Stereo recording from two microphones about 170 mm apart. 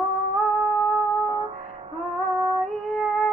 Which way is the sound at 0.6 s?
Centre (ahead or behind).